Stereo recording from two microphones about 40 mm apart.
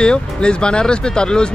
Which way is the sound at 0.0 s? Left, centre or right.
Left.